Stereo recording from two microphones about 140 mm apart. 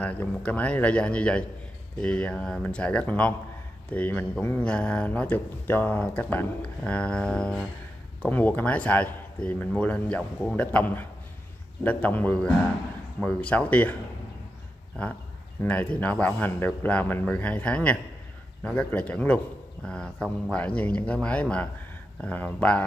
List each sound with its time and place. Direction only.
0.0 s speech: 10° left (ahead or behind)
15.6 s speech: 10° left (ahead or behind)